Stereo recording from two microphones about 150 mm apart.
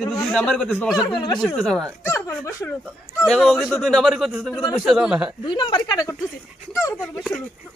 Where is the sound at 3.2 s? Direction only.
Centre (ahead or behind).